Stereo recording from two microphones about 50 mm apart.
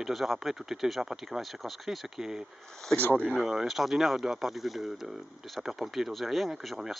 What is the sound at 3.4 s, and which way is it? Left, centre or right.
Speech, centre.